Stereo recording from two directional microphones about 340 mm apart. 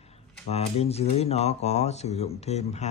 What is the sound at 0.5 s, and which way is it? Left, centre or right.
Mantra, centre.